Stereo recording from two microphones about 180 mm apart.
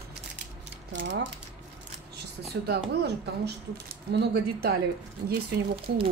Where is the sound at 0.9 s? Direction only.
75° right (ahead or behind).